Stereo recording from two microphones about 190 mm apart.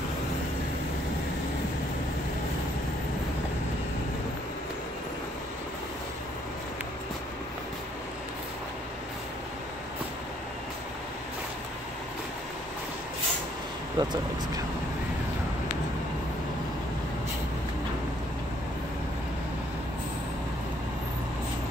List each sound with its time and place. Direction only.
13.9 s speech: 20° right (ahead or behind)